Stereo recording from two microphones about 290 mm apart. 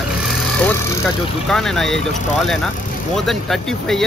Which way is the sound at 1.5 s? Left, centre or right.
Centre.